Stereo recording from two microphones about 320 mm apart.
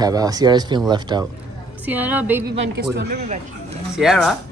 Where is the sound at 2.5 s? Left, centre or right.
Right.